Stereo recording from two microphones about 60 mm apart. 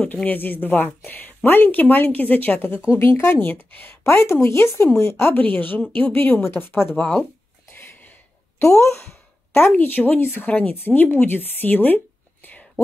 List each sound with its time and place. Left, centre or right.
0.0 s speech: left
3.3 s speech: left
5.3 s a woman's voice: left
6.3 s speech: left
7.7 s a sound: left
8.6 s a sound: left
9.8 s speech: left